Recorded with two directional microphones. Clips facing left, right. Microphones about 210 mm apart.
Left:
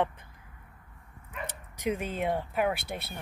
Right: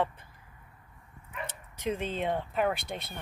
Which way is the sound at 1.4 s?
10° left (ahead or behind).